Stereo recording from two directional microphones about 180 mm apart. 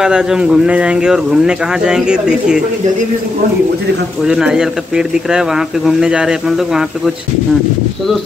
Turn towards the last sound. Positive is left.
turn(degrees=0)  # may be behind; listen again after turning